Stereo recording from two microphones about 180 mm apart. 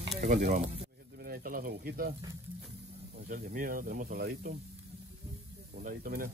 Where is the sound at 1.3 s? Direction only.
50° right (ahead or behind).